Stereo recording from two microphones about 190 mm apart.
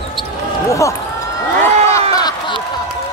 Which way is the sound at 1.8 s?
15° left (ahead or behind).